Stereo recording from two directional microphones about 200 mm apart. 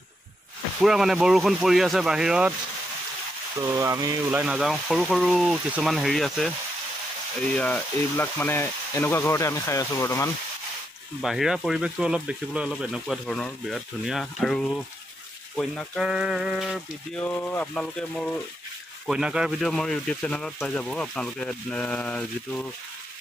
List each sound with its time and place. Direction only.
0.7 s speech: centre (ahead or behind)
3.5 s speech: 15° right (ahead or behind)
4.3 s speech: 5° right (ahead or behind)
7.5 s speech: 5° left (ahead or behind)
11.1 s speech: centre (ahead or behind)